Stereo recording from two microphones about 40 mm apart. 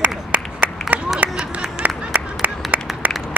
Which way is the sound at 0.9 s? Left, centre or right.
Right.